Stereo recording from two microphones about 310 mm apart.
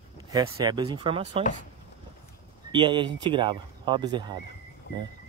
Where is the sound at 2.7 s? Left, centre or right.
Centre.